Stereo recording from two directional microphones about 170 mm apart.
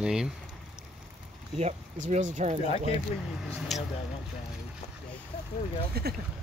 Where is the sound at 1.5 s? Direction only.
45° right (ahead or behind).